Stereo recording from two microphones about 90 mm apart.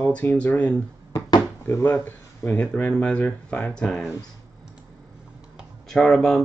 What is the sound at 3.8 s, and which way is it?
Speech, 5° left (ahead or behind).